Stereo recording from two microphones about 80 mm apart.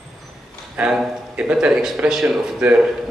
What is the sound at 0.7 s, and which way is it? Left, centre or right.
A man's voice, centre.